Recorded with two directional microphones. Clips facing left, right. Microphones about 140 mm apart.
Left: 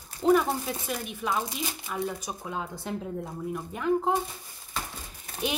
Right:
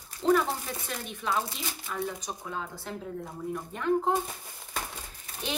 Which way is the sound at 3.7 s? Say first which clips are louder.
Left 4 dB; 5° left (ahead or behind).